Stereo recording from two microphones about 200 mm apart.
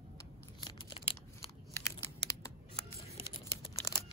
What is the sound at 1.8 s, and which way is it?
Scissors, 15° left (ahead or behind).